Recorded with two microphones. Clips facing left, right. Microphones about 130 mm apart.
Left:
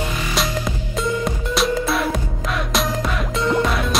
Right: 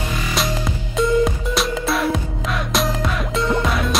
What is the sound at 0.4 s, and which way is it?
Music, centre (ahead or behind).